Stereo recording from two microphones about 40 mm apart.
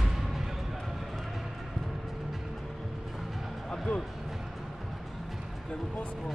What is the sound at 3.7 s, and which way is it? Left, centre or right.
Music, left.